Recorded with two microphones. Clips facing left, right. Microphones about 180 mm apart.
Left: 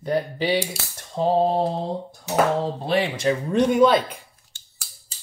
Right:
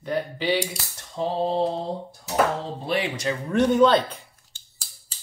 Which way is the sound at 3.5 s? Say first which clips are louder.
Even; 10° left (ahead or behind).